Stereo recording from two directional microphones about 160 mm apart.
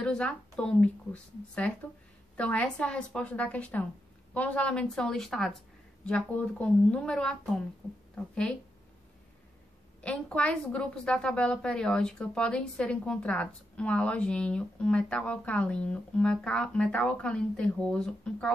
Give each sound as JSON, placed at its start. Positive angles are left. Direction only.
{"t": 0.0, "sound": "a woman's voice", "side_deg": 5}
{"t": 10.0, "sound": "a woman's voice", "side_deg": 5}